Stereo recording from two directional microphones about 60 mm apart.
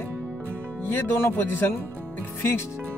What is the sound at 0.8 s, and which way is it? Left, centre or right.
Speech, left.